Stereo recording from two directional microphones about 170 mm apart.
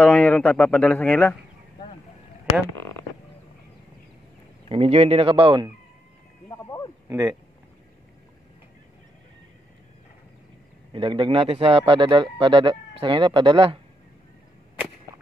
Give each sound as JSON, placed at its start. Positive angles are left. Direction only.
{"t": 0.0, "sound": "speech", "side_deg": 10}
{"t": 2.6, "sound": "speech", "side_deg": 15}
{"t": 4.6, "sound": "a man's voice", "side_deg": -35}
{"t": 6.5, "sound": "a sound", "side_deg": 20}
{"t": 7.1, "sound": "speech", "side_deg": -20}
{"t": 10.9, "sound": "a man's voice", "side_deg": -30}